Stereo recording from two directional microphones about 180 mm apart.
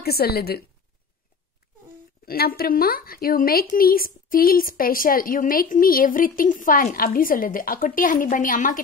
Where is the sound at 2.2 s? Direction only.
60° left (ahead or behind).